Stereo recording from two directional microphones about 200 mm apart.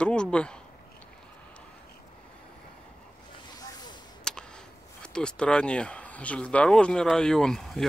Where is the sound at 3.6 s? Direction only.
20° left (ahead or behind).